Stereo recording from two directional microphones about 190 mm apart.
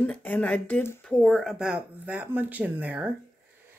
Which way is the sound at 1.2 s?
Centre (ahead or behind).